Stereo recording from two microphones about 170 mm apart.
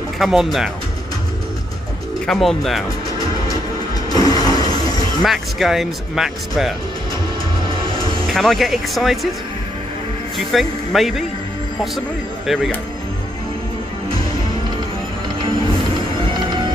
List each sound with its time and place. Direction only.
0.2 s speech: centre (ahead or behind)
2.2 s speech: centre (ahead or behind)
4.1 s music: 20° left (ahead or behind)
5.2 s speech: centre (ahead or behind)
7.8 s music: 30° right (ahead or behind)
8.3 s speech: centre (ahead or behind)
10.3 s speech: centre (ahead or behind)